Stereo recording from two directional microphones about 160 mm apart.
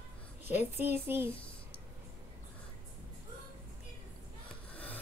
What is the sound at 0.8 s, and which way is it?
Speech, 15° right (ahead or behind).